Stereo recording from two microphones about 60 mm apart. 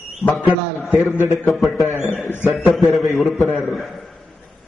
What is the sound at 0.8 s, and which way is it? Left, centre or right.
A man's voice, centre.